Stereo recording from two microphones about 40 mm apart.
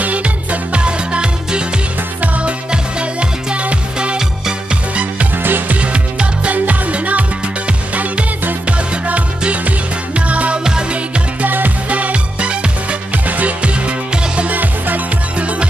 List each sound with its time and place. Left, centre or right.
0.0 s music: right
2.7 s music: right
5.4 s music: right
5.8 s music: right
11.4 s music: right
11.9 s music: right
14.5 s music: right